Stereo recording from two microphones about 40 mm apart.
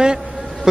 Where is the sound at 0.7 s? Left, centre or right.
Centre.